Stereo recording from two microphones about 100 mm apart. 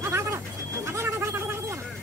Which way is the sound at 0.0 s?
30° right (ahead or behind).